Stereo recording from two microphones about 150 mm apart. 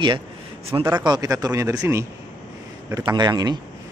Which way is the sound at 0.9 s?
30° right (ahead or behind).